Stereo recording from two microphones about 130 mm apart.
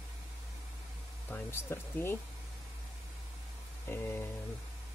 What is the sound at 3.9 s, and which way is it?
Speech, 20° left (ahead or behind).